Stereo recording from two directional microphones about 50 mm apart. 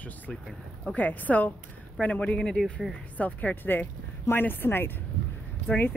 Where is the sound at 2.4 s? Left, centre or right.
Centre.